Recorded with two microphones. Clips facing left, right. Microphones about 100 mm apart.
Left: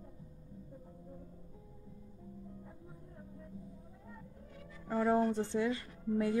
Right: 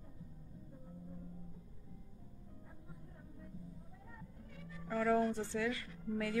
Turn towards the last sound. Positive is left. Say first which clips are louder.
# left 5 dB
turn(degrees=25)  # may be behind; listen again after turning